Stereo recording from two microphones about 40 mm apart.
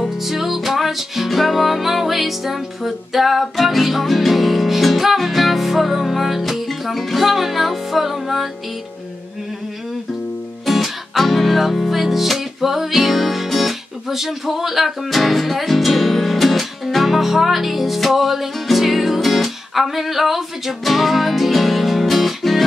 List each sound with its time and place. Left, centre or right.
0.2 s music: centre
10.6 s music: centre